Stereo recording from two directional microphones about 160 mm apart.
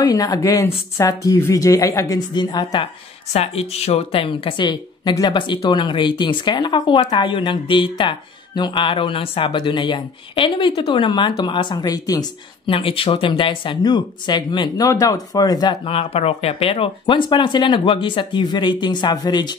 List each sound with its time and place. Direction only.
0.0 s a woman's voice: 25° left (ahead or behind)
3.3 s a woman's voice: 40° left (ahead or behind)